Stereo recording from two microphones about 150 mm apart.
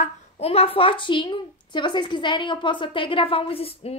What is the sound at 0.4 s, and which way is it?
A woman's voice, 40° left (ahead or behind).